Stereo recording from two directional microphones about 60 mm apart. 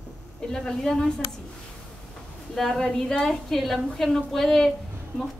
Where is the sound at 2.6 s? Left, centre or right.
Centre.